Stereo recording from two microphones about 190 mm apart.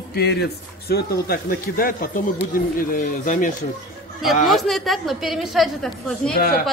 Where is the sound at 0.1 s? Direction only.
60° left (ahead or behind).